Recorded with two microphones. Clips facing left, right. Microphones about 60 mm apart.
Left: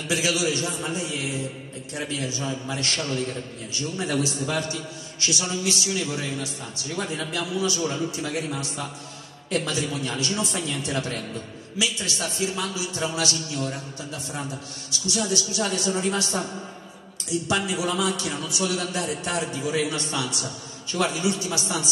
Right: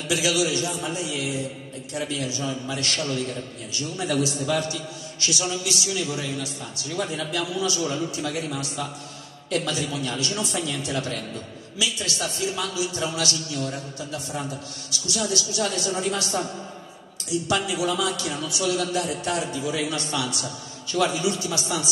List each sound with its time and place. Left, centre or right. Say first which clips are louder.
0.1 s a man's voice: right 1 dB; left
14.9 s a man's voice: left 1 dB; left
17.5 s a man's voice: right 1 dB; left